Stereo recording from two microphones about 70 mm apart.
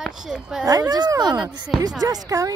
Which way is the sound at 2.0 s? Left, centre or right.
Right.